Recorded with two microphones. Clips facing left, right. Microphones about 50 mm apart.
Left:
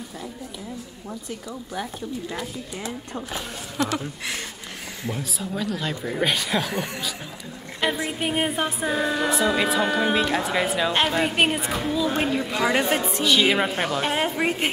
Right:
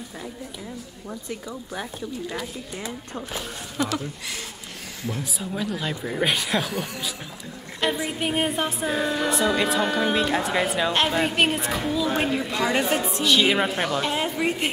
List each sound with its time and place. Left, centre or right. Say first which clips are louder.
3.8 s a sound: left 1 dB; centre
5.2 s speech: even; centre
7.8 s speech: even; centre
12.9 s a woman's voice: left 1 dB; left
13.2 s speech: even; centre
14.0 s a woman's voice: left 1 dB; left